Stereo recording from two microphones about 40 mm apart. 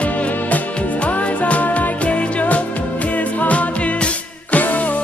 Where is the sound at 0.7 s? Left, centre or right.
Left.